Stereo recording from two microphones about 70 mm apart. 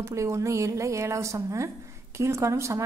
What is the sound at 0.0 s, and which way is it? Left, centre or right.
A woman's voice, right.